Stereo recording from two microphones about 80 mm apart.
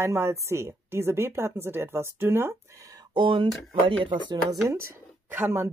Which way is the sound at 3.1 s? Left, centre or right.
Right.